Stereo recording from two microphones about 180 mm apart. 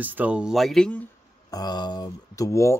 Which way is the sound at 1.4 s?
20° left (ahead or behind).